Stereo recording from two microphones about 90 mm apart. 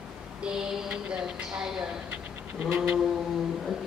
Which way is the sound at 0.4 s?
10° right (ahead or behind).